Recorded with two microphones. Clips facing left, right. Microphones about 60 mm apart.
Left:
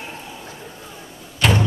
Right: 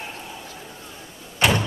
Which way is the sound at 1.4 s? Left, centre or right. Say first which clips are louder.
Left 1 dB; centre.